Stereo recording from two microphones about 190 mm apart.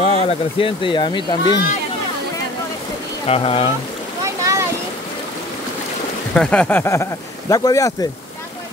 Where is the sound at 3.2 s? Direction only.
30° left (ahead or behind).